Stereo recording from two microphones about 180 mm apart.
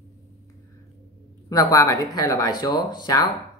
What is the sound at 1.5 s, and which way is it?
Speech, 20° left (ahead or behind).